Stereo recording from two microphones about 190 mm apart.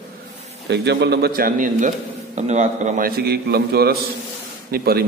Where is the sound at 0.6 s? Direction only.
60° right (ahead or behind).